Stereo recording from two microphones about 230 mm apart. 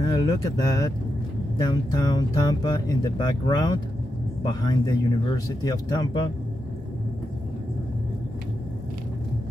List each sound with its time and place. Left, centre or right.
0.0 s vehicle: centre
1.6 s speech: centre